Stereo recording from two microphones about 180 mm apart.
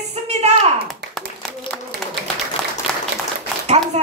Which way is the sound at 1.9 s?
60° right (ahead or behind).